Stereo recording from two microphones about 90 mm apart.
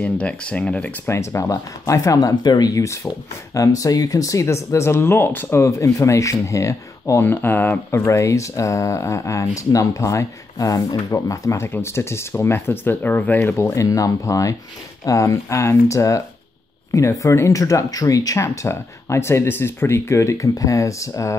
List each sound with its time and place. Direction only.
0.0 s speech: 15° left (ahead or behind)
1.0 s speech: 30° left (ahead or behind)
2.3 s speech: 50° left (ahead or behind); by 5.6 s 25° left (ahead or behind)
5.6 s speech: 35° left (ahead or behind)
7.2 s speech: 25° left (ahead or behind); by 11.6 s 40° left (ahead or behind)
11.6 s speech: 25° left (ahead or behind)